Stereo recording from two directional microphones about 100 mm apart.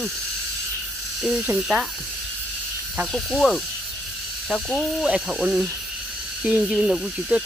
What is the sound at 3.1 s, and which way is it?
Speech, 5° left (ahead or behind).